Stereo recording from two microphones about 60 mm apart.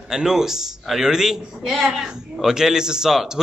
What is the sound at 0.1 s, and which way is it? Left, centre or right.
A man's voice, centre.